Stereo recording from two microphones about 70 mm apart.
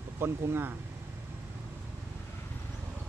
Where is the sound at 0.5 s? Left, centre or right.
Right.